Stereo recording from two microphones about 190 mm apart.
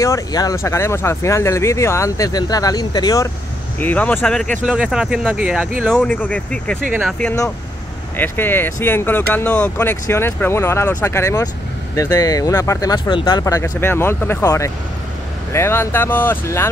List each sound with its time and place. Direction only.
0.0 s speech: 20° left (ahead or behind)
3.8 s speech: 10° left (ahead or behind)
5.9 s speech: 10° left (ahead or behind)
6.9 s speech: 5° right (ahead or behind)
8.2 s speech: 10° left (ahead or behind)